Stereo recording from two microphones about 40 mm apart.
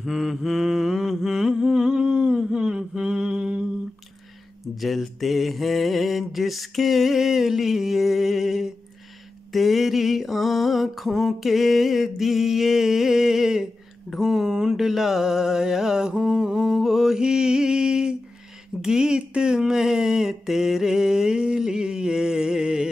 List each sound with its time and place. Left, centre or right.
0.0 s mantra: centre
4.7 s mantra: centre
18.8 s a sound: centre